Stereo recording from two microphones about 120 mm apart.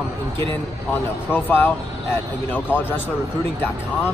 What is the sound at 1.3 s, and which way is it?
Speech, 15° left (ahead or behind).